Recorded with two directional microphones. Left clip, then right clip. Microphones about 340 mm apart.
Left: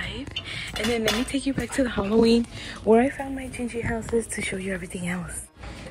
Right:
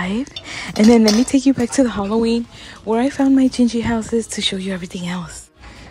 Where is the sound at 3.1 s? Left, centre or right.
Right.